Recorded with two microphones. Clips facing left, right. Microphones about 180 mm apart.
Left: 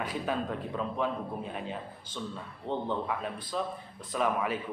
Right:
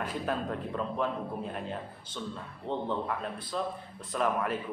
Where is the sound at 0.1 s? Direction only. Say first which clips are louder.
Even; centre (ahead or behind).